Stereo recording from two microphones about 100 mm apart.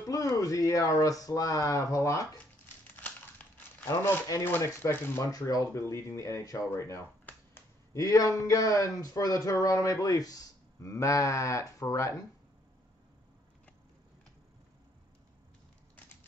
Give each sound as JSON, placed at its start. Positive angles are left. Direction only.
{"t": 0.0, "sound": "speech", "side_deg": 35}
{"t": 3.5, "sound": "speech", "side_deg": 25}